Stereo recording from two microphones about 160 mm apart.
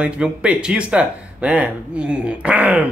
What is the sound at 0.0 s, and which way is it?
Speech, 5° right (ahead or behind).